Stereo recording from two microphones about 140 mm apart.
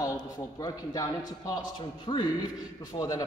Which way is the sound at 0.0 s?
25° left (ahead or behind).